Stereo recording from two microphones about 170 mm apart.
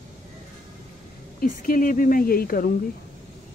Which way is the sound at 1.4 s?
55° left (ahead or behind).